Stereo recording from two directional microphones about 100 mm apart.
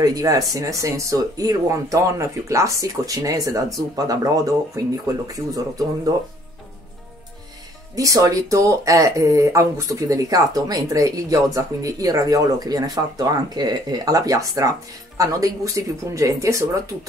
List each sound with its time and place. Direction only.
0.0 s speech: 40° right (ahead or behind)
7.9 s speech: 35° right (ahead or behind)